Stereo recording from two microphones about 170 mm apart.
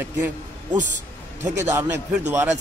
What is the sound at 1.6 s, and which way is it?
Speech, 15° right (ahead or behind).